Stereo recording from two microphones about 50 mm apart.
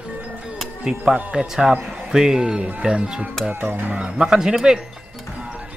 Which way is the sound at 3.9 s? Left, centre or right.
Centre.